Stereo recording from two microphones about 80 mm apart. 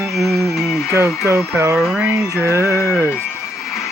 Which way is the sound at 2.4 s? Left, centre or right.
Right.